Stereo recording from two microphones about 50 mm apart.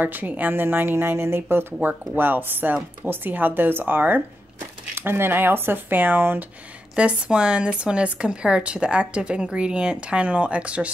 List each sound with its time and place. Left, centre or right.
0.0 s speech: right
4.9 s speech: right
7.0 s speech: right